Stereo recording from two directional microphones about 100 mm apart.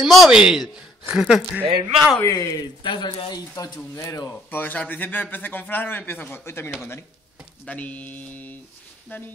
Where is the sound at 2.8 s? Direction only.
55° left (ahead or behind); by 4.4 s 35° left (ahead or behind).